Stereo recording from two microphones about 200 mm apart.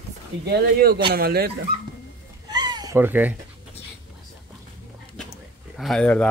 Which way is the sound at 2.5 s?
20° right (ahead or behind).